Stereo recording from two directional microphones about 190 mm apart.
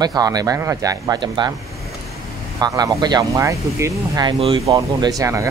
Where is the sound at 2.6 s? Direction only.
20° right (ahead or behind).